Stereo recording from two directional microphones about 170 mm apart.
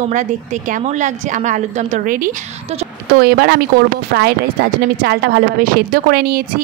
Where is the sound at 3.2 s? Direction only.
70° right (ahead or behind).